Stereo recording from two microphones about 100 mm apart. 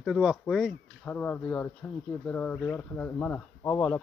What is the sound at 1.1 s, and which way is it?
Speech, 15° left (ahead or behind).